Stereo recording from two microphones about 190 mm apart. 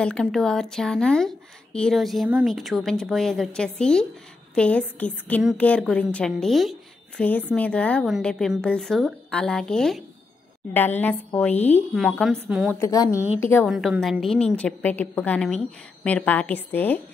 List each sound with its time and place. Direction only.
0.0 s a woman's voice: 5° left (ahead or behind)
12.7 s a woman's voice: 15° left (ahead or behind)
13.7 s a woman's voice: centre (ahead or behind)